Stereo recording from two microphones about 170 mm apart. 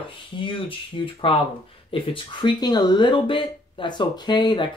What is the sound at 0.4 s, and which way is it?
Speech, 30° left (ahead or behind).